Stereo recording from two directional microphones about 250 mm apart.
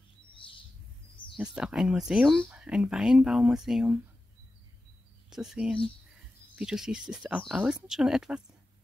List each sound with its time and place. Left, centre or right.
0.3 s bird: centre
1.3 s speech: centre
5.3 s speech: centre